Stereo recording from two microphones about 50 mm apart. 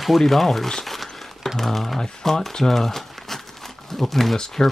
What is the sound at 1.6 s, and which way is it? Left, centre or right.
Speech, centre.